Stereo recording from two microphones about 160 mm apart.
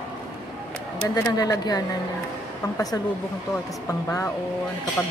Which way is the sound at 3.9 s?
20° left (ahead or behind).